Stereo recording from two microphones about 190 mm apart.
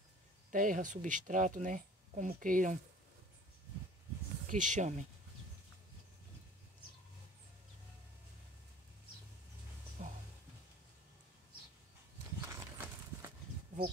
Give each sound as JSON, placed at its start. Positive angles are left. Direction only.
{"t": 0.5, "sound": "speech", "side_deg": -45}
{"t": 4.5, "sound": "speech", "side_deg": -40}
{"t": 10.0, "sound": "music", "side_deg": -40}
{"t": 12.4, "sound": "horse", "side_deg": -15}